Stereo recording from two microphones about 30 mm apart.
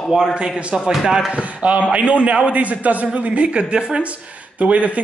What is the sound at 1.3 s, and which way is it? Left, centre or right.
Speech, right.